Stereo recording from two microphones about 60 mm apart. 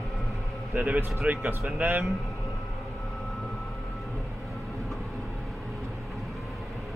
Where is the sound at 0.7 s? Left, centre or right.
Right.